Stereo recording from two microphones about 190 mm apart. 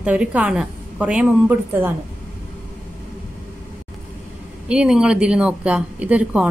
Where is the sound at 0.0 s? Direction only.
5° right (ahead or behind).